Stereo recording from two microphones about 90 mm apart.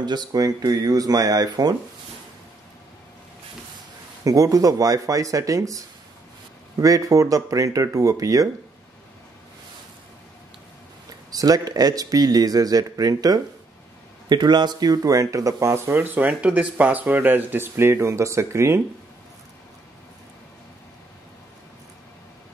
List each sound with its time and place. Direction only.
0.0 s speech: 50° right (ahead or behind)
4.2 s speech: 40° right (ahead or behind)
11.3 s speech: 45° right (ahead or behind)